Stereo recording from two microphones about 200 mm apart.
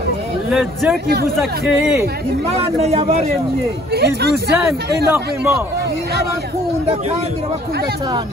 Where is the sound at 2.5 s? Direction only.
30° right (ahead or behind).